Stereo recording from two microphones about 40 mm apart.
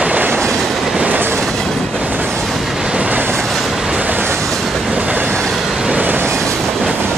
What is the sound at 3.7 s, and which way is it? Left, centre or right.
Train, centre.